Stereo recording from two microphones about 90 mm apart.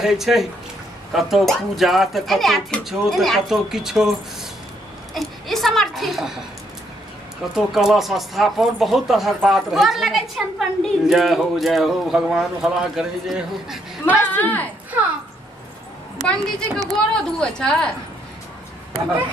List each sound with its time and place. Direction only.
0.0 s a woman's voice: 5° right (ahead or behind)
5.1 s a child's voice: centre (ahead or behind)
7.5 s a woman's voice: 5° right (ahead or behind)
14.2 s speech: 20° left (ahead or behind)
16.3 s speech: 5° left (ahead or behind)